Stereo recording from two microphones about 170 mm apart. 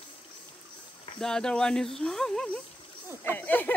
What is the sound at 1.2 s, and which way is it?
Speech, 5° left (ahead or behind).